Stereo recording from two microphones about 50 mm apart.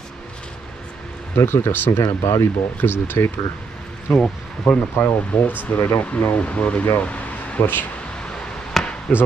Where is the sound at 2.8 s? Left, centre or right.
Left.